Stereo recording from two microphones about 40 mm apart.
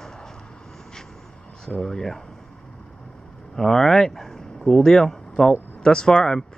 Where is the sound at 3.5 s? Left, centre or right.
Centre.